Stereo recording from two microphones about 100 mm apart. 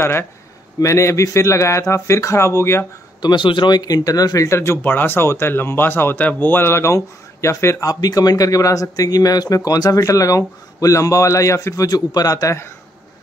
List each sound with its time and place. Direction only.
0.0 s speech: 25° left (ahead or behind)
3.2 s speech: 50° left (ahead or behind); by 12.7 s 30° left (ahead or behind)